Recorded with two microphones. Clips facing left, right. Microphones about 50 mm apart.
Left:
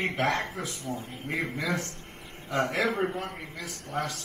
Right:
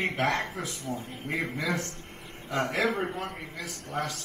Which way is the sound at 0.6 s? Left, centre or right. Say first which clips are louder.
Even; right.